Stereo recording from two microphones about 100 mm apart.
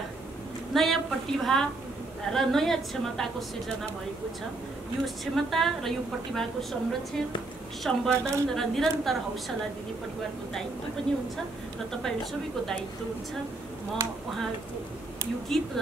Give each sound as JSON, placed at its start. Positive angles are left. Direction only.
{"t": 0.7, "sound": "a woman's voice", "side_deg": 0}
{"t": 5.0, "sound": "a woman's voice", "side_deg": 0}
{"t": 12.0, "sound": "a woman's voice", "side_deg": 5}
{"t": 15.5, "sound": "a woman's voice", "side_deg": 5}